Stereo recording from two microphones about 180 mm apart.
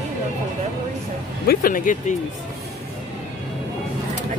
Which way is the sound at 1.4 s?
50° left (ahead or behind).